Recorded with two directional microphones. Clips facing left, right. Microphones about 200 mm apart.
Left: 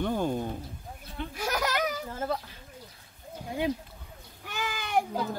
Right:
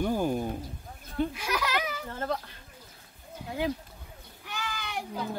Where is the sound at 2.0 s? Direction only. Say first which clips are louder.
Even; 5° left (ahead or behind).